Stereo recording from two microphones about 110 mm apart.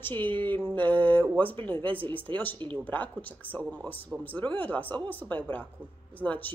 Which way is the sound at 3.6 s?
10° right (ahead or behind).